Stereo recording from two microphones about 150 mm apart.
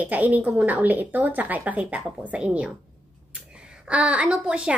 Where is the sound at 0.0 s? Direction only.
10° right (ahead or behind).